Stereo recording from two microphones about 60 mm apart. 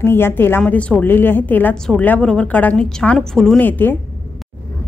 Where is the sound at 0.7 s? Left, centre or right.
Left.